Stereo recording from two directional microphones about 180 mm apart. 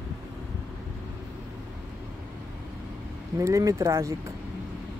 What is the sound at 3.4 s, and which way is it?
Speech, 15° right (ahead or behind).